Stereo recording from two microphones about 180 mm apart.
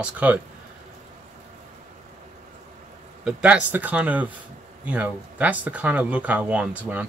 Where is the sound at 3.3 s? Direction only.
5° right (ahead or behind).